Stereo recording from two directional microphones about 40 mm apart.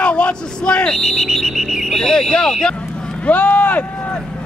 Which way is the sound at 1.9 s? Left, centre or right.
Centre.